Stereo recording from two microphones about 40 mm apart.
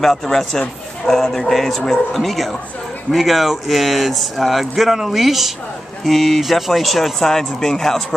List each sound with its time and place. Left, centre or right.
0.0 s a man's voice: centre